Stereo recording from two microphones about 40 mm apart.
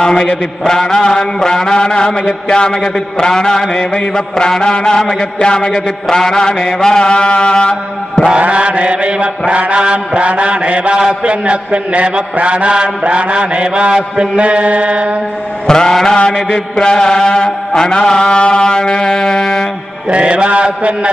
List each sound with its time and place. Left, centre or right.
0.0 s a man's voice: centre
7.1 s music: left
8.4 s mantra: right
15.6 s a man's voice: centre
20.1 s mantra: right